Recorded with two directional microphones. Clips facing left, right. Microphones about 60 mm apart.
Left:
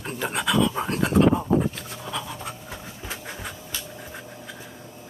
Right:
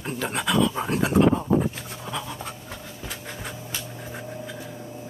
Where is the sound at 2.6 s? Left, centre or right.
Left.